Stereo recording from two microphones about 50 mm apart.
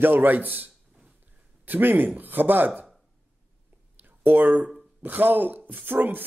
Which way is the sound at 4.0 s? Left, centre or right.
Right.